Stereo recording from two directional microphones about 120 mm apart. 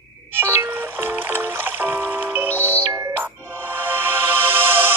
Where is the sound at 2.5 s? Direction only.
15° left (ahead or behind).